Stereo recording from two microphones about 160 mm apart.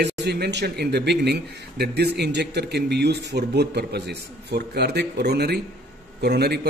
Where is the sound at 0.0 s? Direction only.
90° right.